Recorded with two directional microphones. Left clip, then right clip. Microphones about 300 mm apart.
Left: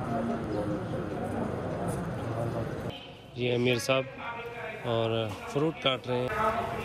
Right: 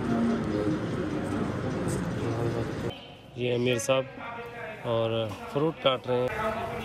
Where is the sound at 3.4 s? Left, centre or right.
Centre.